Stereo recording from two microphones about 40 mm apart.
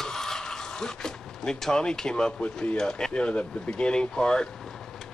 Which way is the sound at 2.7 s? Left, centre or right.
Centre.